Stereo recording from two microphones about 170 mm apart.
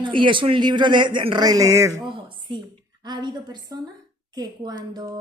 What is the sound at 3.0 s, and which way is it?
Speech, 25° right (ahead or behind).